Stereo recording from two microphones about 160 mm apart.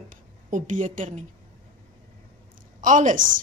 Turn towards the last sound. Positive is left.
turn(degrees=-50)  # may be behind; listen again after turning